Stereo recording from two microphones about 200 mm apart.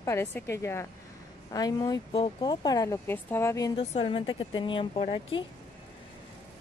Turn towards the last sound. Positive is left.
turn(degrees=25)  # may be behind; listen again after turning